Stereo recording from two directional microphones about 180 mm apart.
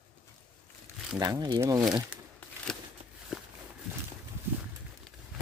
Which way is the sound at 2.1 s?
5° right (ahead or behind).